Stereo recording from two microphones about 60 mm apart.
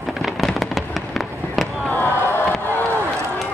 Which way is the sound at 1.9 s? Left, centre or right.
Left.